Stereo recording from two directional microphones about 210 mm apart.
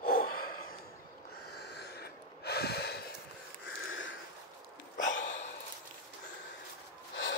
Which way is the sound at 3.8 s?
65° left (ahead or behind).